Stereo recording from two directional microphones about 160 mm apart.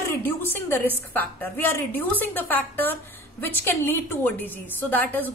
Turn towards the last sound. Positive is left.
turn(degrees=10)  # may be behind; listen again after turning